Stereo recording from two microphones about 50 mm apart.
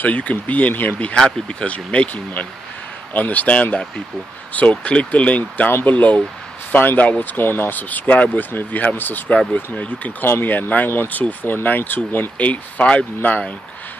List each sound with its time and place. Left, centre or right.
0.0 s speech: left
1.1 s speech: centre; by 9.2 s left
9.5 s speech: left
10.2 s speech: left
12.4 s speech: left